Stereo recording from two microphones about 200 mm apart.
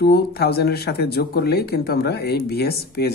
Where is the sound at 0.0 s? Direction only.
50° left (ahead or behind).